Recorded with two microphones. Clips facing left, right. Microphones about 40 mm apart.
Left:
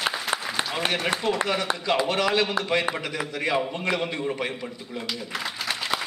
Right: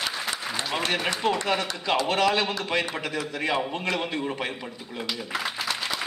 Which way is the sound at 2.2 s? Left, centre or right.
Centre.